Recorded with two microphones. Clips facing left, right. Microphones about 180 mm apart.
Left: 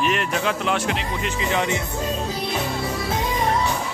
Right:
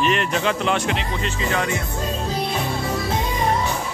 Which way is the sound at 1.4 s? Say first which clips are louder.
Left 1 dB; 20° left (ahead or behind).